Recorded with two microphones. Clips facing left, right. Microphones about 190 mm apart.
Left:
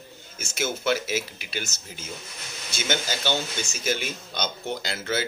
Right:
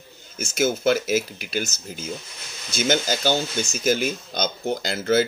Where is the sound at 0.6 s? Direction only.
45° right (ahead or behind).